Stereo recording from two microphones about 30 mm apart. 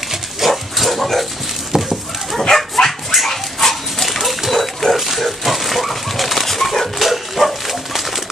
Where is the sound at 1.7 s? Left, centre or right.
Right.